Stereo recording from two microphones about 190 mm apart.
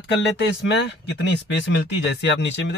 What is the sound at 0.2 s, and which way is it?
Speech, 65° left (ahead or behind).